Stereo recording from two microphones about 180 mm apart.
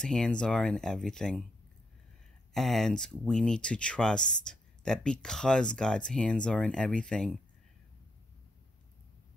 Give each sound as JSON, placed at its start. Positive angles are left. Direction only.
{"t": 0.0, "sound": "speech", "side_deg": 5}
{"t": 2.5, "sound": "speech", "side_deg": 0}